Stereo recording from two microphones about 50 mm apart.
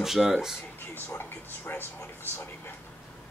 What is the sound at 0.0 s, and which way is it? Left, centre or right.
Speech, centre.